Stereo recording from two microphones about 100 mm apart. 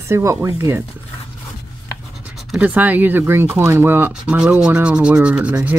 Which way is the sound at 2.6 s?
15° right (ahead or behind).